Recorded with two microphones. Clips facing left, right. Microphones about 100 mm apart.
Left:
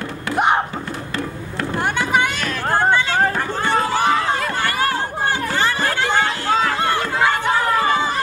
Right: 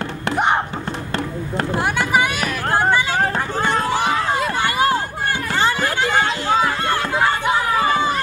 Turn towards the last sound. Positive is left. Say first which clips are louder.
# right 1 dB
turn(degrees=-15)  # may be behind; listen again after turning